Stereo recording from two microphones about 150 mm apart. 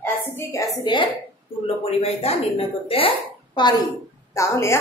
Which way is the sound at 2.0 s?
40° left (ahead or behind).